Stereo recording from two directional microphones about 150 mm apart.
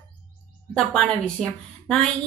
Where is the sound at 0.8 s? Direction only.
5° left (ahead or behind).